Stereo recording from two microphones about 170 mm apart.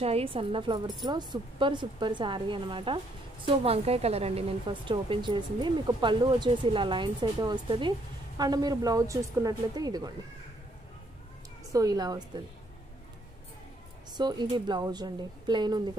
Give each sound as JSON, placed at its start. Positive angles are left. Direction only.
{"t": 0.0, "sound": "a woman's voice", "side_deg": -35}
{"t": 11.7, "sound": "speech", "side_deg": -20}
{"t": 14.1, "sound": "speech", "side_deg": -25}